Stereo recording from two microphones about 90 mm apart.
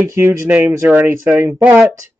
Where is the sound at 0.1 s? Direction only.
30° right (ahead or behind).